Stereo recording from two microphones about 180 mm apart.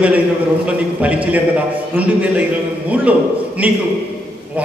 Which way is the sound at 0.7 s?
5° right (ahead or behind).